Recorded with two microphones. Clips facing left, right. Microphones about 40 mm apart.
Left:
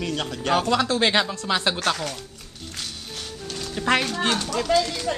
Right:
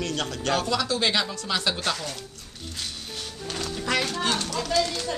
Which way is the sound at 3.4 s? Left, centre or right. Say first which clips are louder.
Right 3 dB; centre.